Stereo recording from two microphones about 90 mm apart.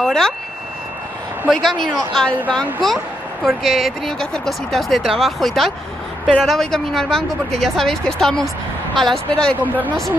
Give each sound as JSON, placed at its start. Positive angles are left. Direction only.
{"t": 0.0, "sound": "speech", "side_deg": 5}
{"t": 1.5, "sound": "speech", "side_deg": 5}
{"t": 9.6, "sound": "speech", "side_deg": -20}